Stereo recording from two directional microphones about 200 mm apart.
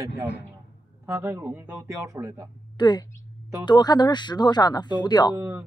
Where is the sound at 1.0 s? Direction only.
15° right (ahead or behind).